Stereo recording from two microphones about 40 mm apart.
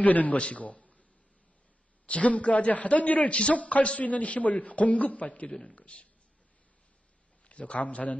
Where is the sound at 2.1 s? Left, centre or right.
Left.